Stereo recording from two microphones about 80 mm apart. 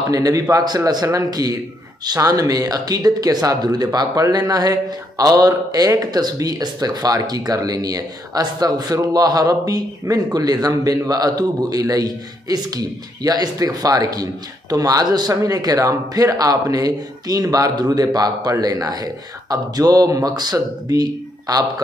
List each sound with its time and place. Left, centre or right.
0.1 s speech: right